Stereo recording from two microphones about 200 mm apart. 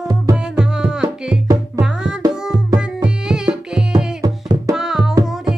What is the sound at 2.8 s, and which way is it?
Tabla, 5° right (ahead or behind).